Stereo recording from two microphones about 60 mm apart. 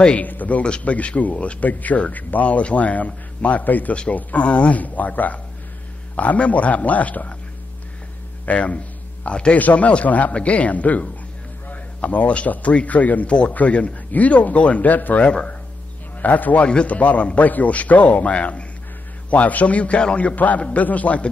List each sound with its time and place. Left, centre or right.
0.0 s speech: left
8.5 s a man's voice: left